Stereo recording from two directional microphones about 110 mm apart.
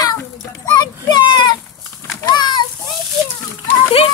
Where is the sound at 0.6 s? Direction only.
35° left (ahead or behind).